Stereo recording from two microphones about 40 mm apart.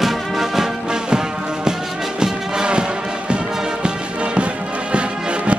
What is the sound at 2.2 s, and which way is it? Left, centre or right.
Music, right.